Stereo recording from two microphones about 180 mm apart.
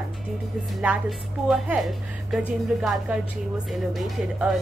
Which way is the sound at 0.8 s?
5° right (ahead or behind).